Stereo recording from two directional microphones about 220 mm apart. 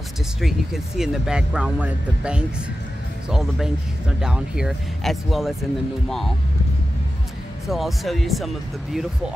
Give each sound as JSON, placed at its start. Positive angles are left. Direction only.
{"t": 0.4, "sound": "speech", "side_deg": 0}
{"t": 7.6, "sound": "speech", "side_deg": 0}